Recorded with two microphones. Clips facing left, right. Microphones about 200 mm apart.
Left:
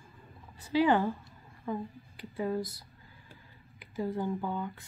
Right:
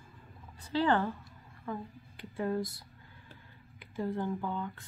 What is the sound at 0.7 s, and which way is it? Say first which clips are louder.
Speech: left 3 dB; 10° left (ahead or behind).